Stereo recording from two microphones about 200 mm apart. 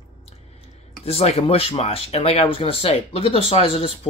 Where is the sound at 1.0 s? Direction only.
30° left (ahead or behind).